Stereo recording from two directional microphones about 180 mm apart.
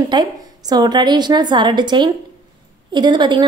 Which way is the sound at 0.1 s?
25° right (ahead or behind).